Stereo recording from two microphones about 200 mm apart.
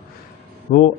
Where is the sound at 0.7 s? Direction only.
35° left (ahead or behind).